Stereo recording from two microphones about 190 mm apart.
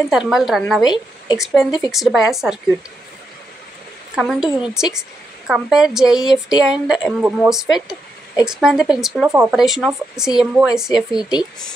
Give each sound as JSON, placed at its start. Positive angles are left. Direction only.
{"t": 0.1, "sound": "a woman's voice", "side_deg": 0}
{"t": 0.8, "sound": "a woman's voice", "side_deg": 20}
{"t": 1.4, "sound": "a woman's voice", "side_deg": 0}
{"t": 4.1, "sound": "a woman's voice", "side_deg": 0}
{"t": 11.1, "sound": "a woman's voice", "side_deg": 20}